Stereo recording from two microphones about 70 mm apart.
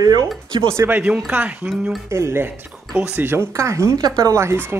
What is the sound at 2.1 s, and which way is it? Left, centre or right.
Speech, right.